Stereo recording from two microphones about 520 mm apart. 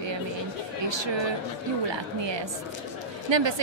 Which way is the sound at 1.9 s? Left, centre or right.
Right.